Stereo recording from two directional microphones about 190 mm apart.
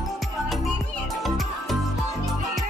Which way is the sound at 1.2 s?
Centre (ahead or behind).